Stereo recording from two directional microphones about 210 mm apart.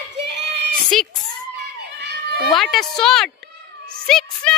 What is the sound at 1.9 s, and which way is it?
Children playing, 55° right (ahead or behind).